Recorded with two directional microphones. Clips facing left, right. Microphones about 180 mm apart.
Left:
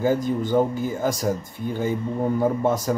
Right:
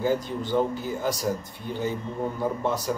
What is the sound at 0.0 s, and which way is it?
Speech, 50° left (ahead or behind).